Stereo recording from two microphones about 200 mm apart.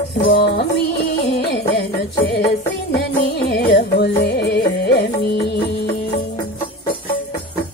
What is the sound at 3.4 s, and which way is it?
Music, 50° left (ahead or behind).